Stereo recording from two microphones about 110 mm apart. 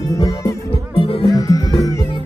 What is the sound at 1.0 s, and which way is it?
Music, 55° left (ahead or behind).